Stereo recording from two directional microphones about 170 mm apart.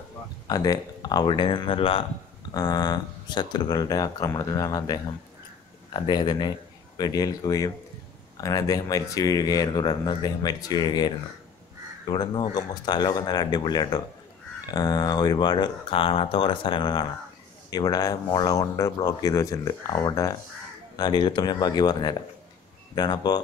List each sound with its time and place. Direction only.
0.5 s speech: 20° left (ahead or behind)